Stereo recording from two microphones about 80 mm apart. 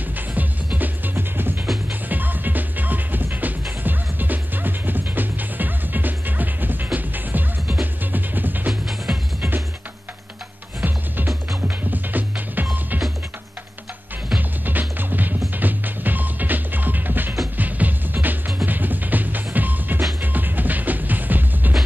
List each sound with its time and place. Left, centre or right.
0.3 s music: centre
8.8 s music: centre
10.8 s music: right
14.3 s music: right